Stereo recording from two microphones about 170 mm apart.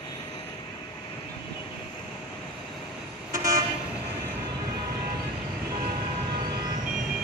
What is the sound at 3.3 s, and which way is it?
Vehicle, 20° right (ahead or behind).